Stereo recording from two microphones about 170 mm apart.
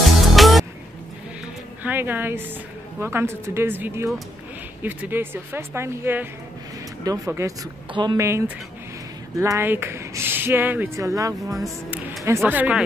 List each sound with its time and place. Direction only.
0.0 s music: centre (ahead or behind)
1.8 s a woman's voice: 10° right (ahead or behind); by 8.2 s 25° right (ahead or behind)
8.2 s speech: 15° right (ahead or behind)
11.6 s speech: centre (ahead or behind)